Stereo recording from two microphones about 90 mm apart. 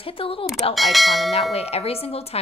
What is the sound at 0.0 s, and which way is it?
Speech, 90° left.